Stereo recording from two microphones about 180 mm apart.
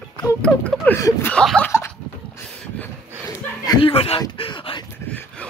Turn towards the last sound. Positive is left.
turn(degrees=25)  # may be behind; listen again after turning